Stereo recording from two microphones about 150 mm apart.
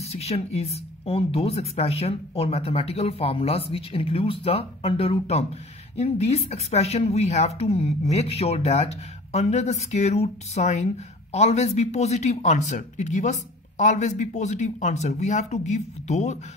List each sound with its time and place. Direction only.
0.0 s speech: 45° left (ahead or behind)